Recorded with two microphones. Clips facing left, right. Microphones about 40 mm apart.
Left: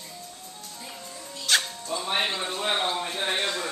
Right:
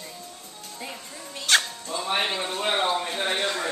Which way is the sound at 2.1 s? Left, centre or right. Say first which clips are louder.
Right 2 dB; centre.